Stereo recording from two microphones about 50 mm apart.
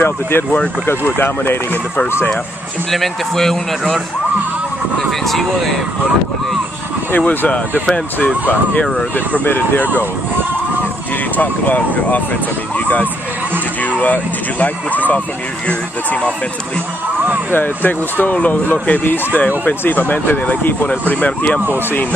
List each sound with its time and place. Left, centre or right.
0.0 s speech: left
2.9 s a man's voice: centre
7.1 s speech: left
9.4 s speech: left
11.3 s speech: left
17.5 s speech: left